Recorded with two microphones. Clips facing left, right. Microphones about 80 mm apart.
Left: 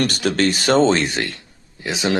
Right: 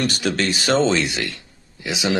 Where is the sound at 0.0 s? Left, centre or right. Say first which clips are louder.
Left 3 dB; left.